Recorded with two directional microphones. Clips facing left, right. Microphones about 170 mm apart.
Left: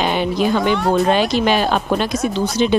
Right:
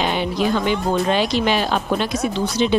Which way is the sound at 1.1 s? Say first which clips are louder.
Left 3 dB; 50° left (ahead or behind).